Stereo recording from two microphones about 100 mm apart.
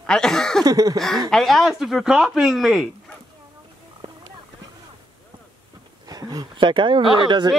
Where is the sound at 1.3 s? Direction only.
Centre (ahead or behind).